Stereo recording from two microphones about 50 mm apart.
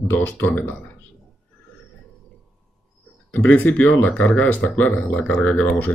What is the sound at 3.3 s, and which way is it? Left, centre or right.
Speech, left.